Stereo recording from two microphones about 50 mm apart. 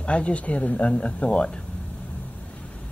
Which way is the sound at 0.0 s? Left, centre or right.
Left.